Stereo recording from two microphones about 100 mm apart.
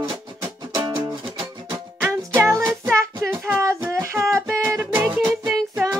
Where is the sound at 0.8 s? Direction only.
50° right (ahead or behind).